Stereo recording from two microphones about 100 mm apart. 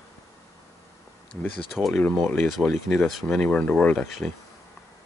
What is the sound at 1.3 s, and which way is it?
Speech, 20° left (ahead or behind).